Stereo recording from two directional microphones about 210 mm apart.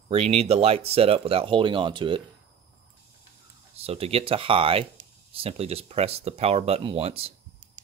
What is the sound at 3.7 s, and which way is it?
Speech, 30° right (ahead or behind).